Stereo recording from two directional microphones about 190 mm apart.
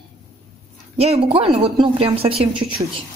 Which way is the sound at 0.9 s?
35° right (ahead or behind).